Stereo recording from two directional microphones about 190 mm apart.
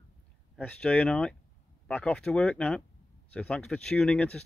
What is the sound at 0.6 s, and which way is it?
Speech, 5° left (ahead or behind).